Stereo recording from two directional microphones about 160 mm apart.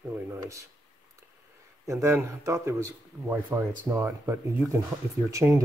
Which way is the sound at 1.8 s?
20° right (ahead or behind).